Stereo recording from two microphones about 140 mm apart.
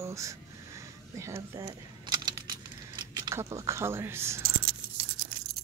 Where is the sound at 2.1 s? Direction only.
30° right (ahead or behind).